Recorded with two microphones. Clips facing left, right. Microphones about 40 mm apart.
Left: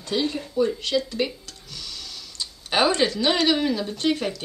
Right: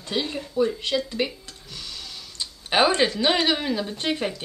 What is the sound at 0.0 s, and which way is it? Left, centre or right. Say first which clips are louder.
Speech: left 2 dB; centre.